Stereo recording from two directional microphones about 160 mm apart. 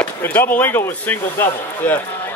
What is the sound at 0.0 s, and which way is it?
Speech, 10° left (ahead or behind).